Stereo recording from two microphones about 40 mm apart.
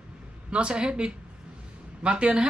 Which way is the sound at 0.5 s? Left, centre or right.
Right.